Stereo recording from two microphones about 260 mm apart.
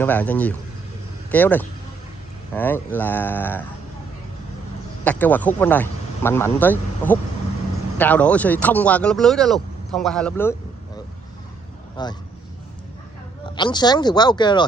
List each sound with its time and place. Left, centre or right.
0.0 s speech: centre
5.0 s speech: centre
12.0 s speech: centre
13.6 s speech: centre